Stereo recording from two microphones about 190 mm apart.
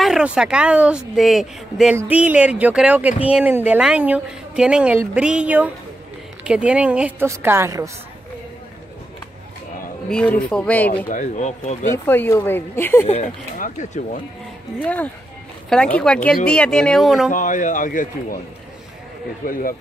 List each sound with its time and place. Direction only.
0.0 s a woman's voice: 5° right (ahead or behind)
10.0 s a woman's voice: 5° left (ahead or behind)
11.1 s speech: 40° left (ahead or behind)
11.9 s speech: 10° left (ahead or behind)
13.1 s speech: 40° left (ahead or behind)
14.8 s a woman's voice: 5° left (ahead or behind)
17.3 s a man's voice: 45° left (ahead or behind)